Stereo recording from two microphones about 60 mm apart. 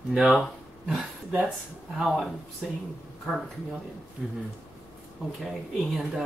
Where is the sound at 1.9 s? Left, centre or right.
Centre.